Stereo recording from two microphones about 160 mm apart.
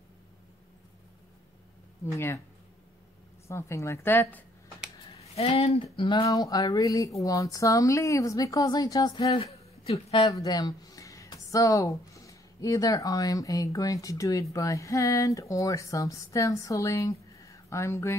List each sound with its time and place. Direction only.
2.1 s a woman's voice: 15° left (ahead or behind)
3.4 s a woman's voice: 15° left (ahead or behind)
5.2 s a sound: 35° left (ahead or behind)
6.2 s speech: 20° left (ahead or behind); by 10.0 s 35° left (ahead or behind)
10.1 s speech: 25° left (ahead or behind)